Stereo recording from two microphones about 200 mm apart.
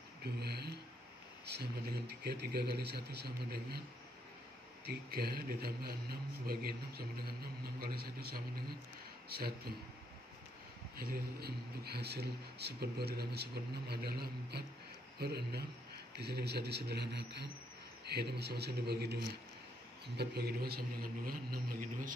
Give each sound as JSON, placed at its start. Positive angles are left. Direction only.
{"t": 0.2, "sound": "speech", "side_deg": -55}
{"t": 4.8, "sound": "a man's voice", "side_deg": -50}
{"t": 11.0, "sound": "a man's voice", "side_deg": -50}